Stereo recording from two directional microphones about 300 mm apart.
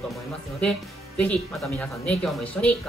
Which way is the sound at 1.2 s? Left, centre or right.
Centre.